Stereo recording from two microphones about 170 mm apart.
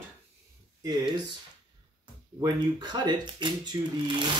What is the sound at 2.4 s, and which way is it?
Speech, 25° right (ahead or behind).